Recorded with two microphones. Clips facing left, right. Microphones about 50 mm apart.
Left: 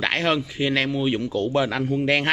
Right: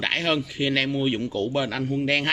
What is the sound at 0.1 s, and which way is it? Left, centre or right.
Speech, left.